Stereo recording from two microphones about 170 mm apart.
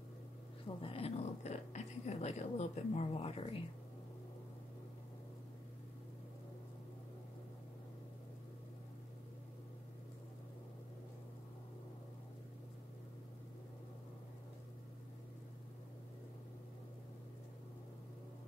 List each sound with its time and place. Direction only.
0.7 s speech: 35° left (ahead or behind)